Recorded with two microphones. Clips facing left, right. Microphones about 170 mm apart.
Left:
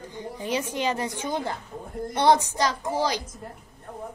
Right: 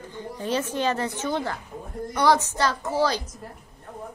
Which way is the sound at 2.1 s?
25° left (ahead or behind).